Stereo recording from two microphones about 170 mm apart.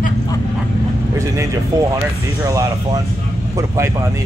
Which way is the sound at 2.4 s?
20° right (ahead or behind).